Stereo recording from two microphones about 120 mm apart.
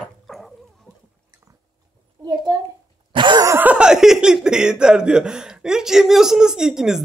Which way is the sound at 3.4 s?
15° right (ahead or behind).